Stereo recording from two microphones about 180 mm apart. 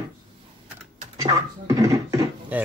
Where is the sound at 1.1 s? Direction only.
20° right (ahead or behind).